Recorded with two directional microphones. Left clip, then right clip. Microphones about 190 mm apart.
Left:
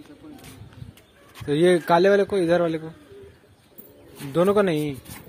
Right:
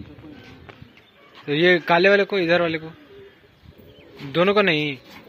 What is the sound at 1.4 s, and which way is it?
A man's voice, 25° left (ahead or behind).